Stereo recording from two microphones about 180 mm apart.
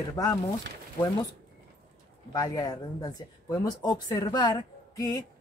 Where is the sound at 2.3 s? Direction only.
20° left (ahead or behind).